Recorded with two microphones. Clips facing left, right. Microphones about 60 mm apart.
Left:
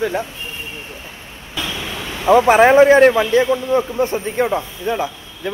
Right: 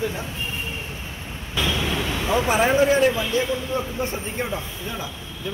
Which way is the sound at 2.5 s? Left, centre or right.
Left.